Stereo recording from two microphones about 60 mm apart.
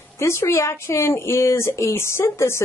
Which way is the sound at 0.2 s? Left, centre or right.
Left.